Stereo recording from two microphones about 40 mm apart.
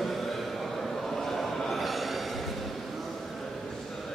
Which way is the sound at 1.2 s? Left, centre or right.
Centre.